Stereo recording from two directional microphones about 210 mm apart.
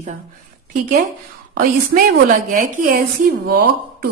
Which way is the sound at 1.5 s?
40° right (ahead or behind).